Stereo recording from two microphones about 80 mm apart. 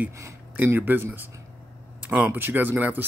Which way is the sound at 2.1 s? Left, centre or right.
Right.